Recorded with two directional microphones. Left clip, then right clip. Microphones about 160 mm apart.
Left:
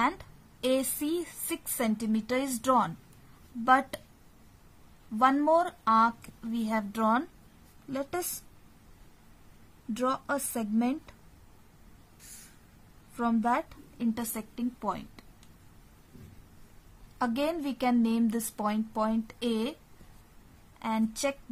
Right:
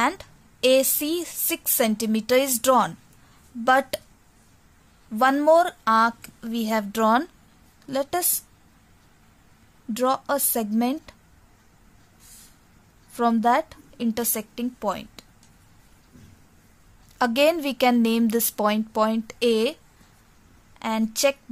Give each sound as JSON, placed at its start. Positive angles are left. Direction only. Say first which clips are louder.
{"t": 0.0, "sound": "a woman's voice", "louder": "right 5 dB", "side_deg": -35}
{"t": 5.2, "sound": "a woman's voice", "louder": "right 7 dB", "side_deg": -35}
{"t": 9.9, "sound": "a woman's voice", "louder": "right 7 dB", "side_deg": -40}
{"t": 13.1, "sound": "a woman's voice", "louder": "right 8 dB", "side_deg": -45}
{"t": 17.2, "sound": "a woman's voice", "louder": "right 10 dB", "side_deg": -40}
{"t": 20.8, "sound": "a woman's voice", "louder": "right 8 dB", "side_deg": -35}